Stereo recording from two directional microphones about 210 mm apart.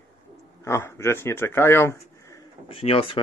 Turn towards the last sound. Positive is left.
turn(degrees=25)  # may be behind; listen again after turning